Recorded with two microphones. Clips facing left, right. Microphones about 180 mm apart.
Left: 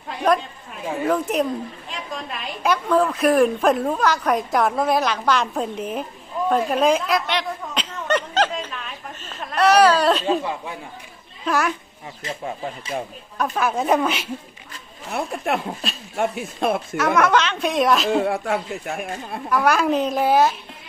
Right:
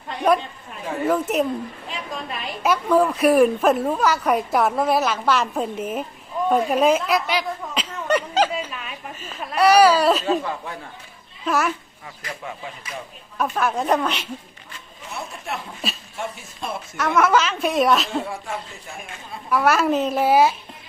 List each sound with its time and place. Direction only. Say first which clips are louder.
0.1 s a sound: even; 5° right (ahead or behind)
1.0 s a woman's voice: right 1 dB; 5° right (ahead or behind)
6.5 s snicker: right 1 dB; 5° right (ahead or behind)
10.4 s speech: left 1 dB; 15° left (ahead or behind)
11.4 s a woman's voice: even; centre (ahead or behind)
12.2 s speech: left 4 dB; 25° left (ahead or behind)
13.4 s a woman's voice: even; centre (ahead or behind)
15.0 s speech: left 8 dB; 55° left (ahead or behind)
15.8 s a woman's voice: even; 5° right (ahead or behind)
16.2 s speech: left 10 dB; 55° left (ahead or behind)
16.9 s a woman's voice: right 2 dB; centre (ahead or behind)
18.2 s speech: left 8 dB; 65° left (ahead or behind)
19.5 s a woman's voice: even; 5° right (ahead or behind)